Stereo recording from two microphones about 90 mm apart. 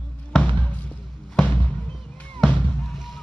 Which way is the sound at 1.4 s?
5° left (ahead or behind).